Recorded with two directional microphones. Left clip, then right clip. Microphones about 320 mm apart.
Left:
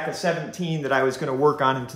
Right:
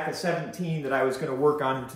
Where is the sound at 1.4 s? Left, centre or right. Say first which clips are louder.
Left 4 dB; left.